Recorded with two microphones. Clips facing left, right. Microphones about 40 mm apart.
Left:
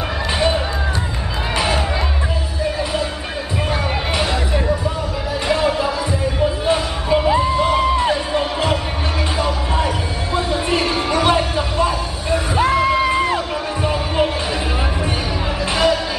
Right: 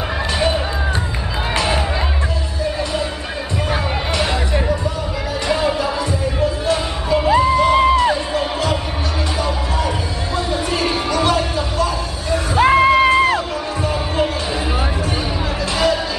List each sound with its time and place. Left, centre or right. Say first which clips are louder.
4.2 s music: even; centre
5.5 s music: left 1 dB; centre
6.6 s music: left 1 dB; left
10.3 s heart sounds: left 2 dB; left
11.1 s music: left 2 dB; left
12.6 s music: right 6 dB; right
13.1 s music: right 4 dB; right